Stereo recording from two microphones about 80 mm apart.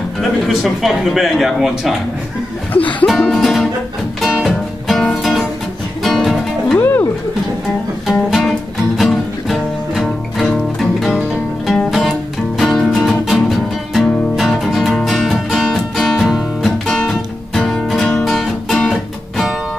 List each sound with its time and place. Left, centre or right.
0.2 s speech: centre
2.7 s music: centre
3.3 s speech: centre
4.2 s music: centre
6.8 s music: left
8.1 s music: centre